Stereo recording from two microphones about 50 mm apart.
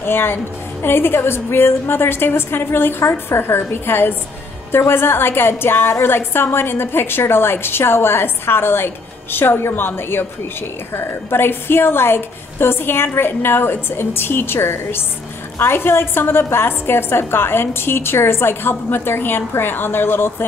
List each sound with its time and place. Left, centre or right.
0.0 s a woman's voice: left